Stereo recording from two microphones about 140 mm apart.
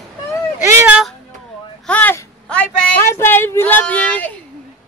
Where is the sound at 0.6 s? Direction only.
15° right (ahead or behind).